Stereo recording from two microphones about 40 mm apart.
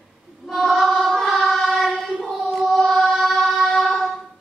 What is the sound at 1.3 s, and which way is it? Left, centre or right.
Choir, centre.